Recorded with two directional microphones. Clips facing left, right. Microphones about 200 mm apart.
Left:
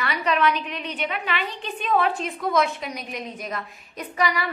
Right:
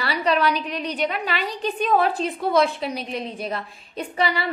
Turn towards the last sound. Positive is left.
turn(degrees=-30)  # may be behind; listen again after turning